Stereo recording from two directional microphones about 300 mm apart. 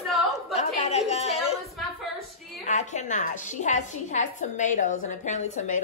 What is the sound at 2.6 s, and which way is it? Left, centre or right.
A woman's voice, left.